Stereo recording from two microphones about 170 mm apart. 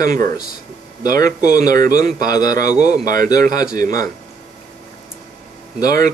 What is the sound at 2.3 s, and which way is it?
Speech, 25° left (ahead or behind).